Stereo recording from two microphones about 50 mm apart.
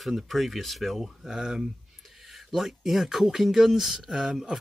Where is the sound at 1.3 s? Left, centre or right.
Centre.